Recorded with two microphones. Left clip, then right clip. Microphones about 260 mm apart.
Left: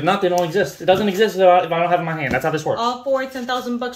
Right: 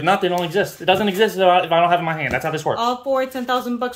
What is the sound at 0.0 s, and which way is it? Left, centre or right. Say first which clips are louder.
Speech: left 1 dB; centre.